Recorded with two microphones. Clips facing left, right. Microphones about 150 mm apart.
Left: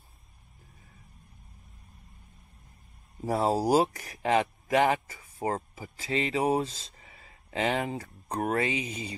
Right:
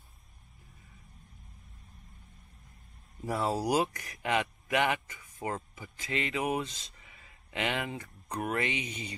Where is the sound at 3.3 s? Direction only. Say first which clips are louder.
Left 5 dB; 35° left (ahead or behind).